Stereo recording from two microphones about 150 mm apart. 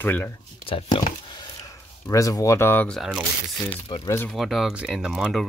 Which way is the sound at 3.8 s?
30° left (ahead or behind).